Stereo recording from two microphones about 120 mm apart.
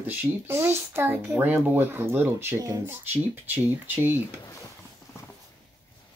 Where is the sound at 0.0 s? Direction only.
15° right (ahead or behind).